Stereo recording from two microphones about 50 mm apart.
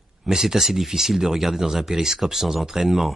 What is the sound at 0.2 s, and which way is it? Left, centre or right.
Speech, centre.